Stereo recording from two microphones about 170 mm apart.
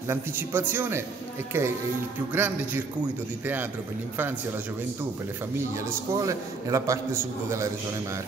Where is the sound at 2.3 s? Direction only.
10° right (ahead or behind).